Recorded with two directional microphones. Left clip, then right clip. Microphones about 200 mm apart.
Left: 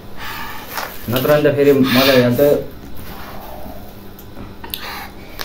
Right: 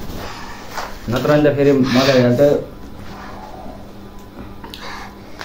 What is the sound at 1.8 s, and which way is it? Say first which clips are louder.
Speech: left 2 dB; 15° left (ahead or behind).